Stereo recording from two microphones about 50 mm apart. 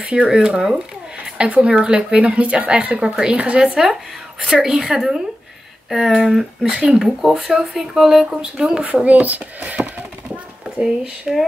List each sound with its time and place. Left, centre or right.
0.0 s speech: right
3.9 s speech: centre
6.6 s speech: centre
7.0 s speech: centre
9.0 s speech: right
10.6 s speech: centre